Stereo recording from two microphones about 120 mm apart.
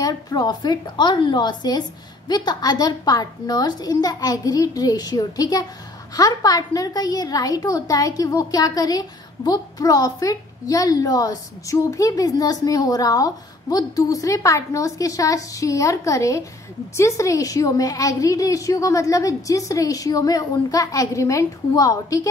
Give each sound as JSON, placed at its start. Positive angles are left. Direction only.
{"t": 0.0, "sound": "a woman's voice", "side_deg": 35}